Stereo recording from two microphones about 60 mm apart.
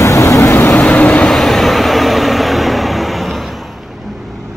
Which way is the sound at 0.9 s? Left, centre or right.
Left.